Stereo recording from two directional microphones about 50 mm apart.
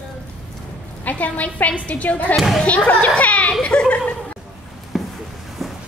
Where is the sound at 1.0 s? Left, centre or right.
Left.